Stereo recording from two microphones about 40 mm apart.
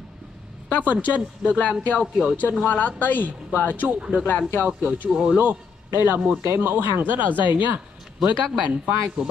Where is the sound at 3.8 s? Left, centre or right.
Right.